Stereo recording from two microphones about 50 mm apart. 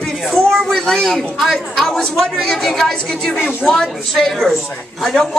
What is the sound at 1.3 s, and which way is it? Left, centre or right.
Speech, centre.